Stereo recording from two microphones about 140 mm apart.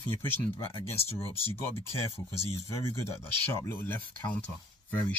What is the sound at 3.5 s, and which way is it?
Speech, 15° left (ahead or behind).